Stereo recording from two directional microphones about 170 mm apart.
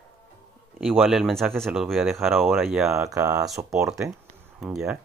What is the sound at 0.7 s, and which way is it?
Speech, centre (ahead or behind).